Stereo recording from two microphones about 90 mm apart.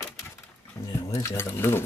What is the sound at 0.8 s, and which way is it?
Speech, 40° left (ahead or behind).